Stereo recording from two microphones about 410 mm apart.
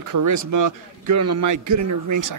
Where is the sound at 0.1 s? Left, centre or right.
Right.